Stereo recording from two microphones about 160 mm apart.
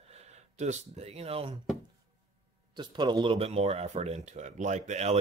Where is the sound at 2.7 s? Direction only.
25° right (ahead or behind).